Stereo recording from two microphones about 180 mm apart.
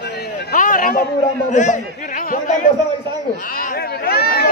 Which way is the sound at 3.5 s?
55° left (ahead or behind).